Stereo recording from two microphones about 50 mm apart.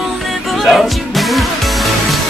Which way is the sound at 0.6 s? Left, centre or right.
Centre.